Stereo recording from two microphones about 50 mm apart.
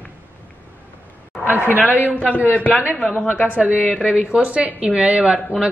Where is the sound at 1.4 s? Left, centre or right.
Right.